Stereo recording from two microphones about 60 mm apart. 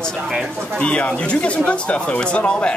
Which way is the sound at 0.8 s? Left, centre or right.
Left.